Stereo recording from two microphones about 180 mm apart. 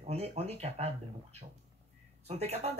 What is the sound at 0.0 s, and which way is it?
Speech, 35° right (ahead or behind).